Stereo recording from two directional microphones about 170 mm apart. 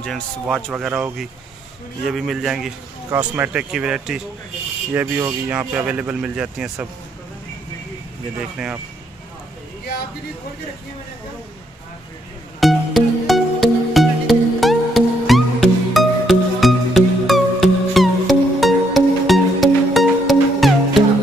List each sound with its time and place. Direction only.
0.0 s speech: 5° left (ahead or behind)
4.9 s speech: 15° right (ahead or behind)
12.5 s music: centre (ahead or behind)